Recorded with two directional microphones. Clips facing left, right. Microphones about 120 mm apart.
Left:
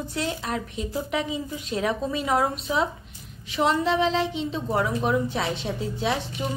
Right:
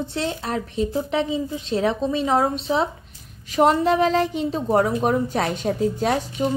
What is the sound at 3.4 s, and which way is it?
A woman's voice, 45° right (ahead or behind).